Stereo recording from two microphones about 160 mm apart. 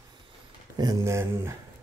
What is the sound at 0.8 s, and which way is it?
Speech, 20° right (ahead or behind).